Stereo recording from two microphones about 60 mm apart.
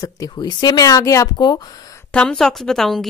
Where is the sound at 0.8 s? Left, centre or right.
Left.